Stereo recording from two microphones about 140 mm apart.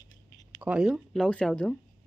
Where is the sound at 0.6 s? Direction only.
5° right (ahead or behind).